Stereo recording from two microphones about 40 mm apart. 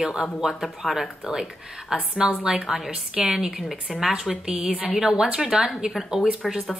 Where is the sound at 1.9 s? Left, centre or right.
Centre.